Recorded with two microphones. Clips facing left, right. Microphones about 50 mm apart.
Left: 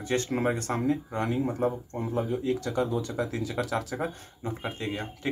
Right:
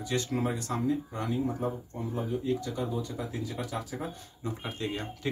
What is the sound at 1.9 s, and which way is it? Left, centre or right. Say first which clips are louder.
Speech: left 4 dB; left.